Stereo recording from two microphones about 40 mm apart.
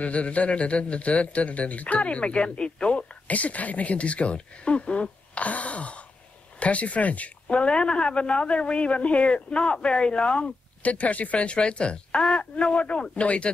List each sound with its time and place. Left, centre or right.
0.0 s a man's voice: left
3.3 s a man's voice: left